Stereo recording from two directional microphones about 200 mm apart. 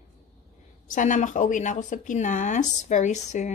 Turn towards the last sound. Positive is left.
turn(degrees=35)  # may be behind; listen again after turning